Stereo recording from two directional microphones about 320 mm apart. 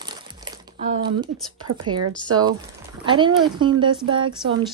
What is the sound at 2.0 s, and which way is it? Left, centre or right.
Speech, right.